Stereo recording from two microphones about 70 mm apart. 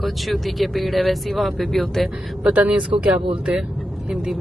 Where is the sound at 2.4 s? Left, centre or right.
Centre.